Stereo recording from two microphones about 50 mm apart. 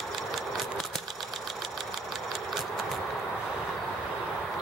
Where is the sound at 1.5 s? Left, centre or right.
Centre.